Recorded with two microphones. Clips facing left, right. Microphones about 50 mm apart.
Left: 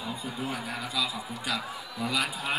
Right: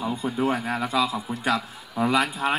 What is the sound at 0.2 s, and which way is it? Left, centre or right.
A man's voice, right.